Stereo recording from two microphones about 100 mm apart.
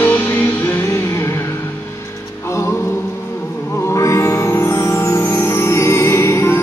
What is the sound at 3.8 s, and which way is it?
Music, 30° left (ahead or behind).